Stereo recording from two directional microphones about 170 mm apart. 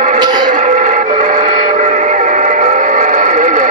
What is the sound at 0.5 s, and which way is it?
Train, 45° right (ahead or behind).